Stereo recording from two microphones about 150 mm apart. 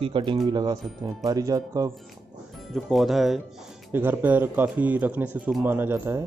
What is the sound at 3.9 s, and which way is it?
Speech, 15° right (ahead or behind).